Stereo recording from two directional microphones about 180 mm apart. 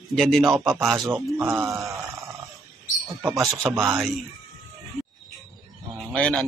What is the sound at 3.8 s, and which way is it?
Speech, centre (ahead or behind).